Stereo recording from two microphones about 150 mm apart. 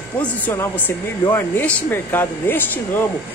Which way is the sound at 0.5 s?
15° left (ahead or behind).